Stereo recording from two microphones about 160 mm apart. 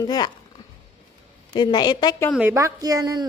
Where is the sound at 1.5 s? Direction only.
25° left (ahead or behind).